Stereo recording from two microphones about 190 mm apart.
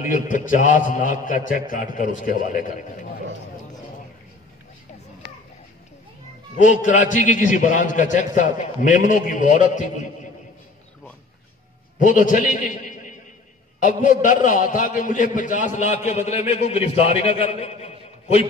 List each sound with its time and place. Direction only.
0.0 s a man's voice: 45° left (ahead or behind)
6.6 s a man's voice: 40° left (ahead or behind)
12.0 s a man's voice: 45° left (ahead or behind)